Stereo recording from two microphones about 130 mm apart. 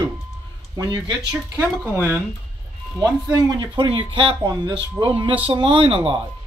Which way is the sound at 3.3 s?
30° right (ahead or behind).